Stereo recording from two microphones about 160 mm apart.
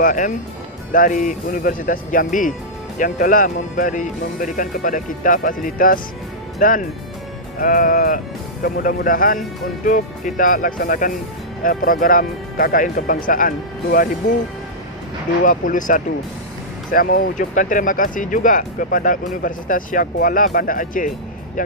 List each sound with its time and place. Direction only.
0.0 s speech: 55° left (ahead or behind)
15.4 s speech: 55° left (ahead or behind)